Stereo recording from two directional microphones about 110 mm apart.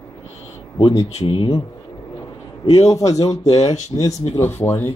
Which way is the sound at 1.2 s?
50° left (ahead or behind).